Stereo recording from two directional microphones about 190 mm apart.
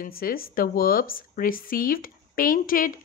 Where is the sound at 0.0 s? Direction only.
50° left (ahead or behind).